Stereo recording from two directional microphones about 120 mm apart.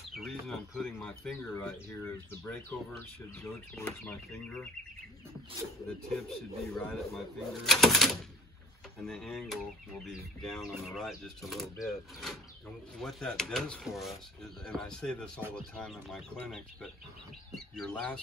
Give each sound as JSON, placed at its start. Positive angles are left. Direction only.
{"t": 0.1, "sound": "speech", "side_deg": 5}
{"t": 1.9, "sound": "speech", "side_deg": 25}
{"t": 3.8, "sound": "speech", "side_deg": 15}
{"t": 6.0, "sound": "speech", "side_deg": 5}